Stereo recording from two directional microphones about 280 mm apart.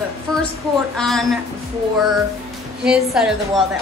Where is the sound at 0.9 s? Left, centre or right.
Centre.